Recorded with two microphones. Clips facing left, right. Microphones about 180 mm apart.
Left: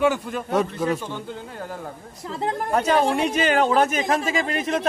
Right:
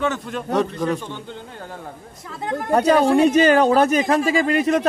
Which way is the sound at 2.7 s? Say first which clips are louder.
Right 6 dB; 35° right (ahead or behind).